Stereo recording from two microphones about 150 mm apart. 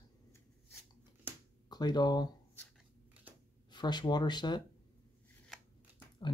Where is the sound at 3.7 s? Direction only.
30° left (ahead or behind).